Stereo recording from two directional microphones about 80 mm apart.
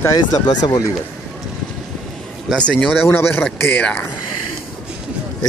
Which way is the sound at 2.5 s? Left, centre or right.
Centre.